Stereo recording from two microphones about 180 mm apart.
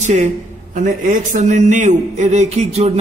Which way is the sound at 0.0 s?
40° right (ahead or behind).